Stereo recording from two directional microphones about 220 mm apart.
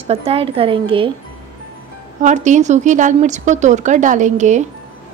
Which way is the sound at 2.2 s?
35° right (ahead or behind).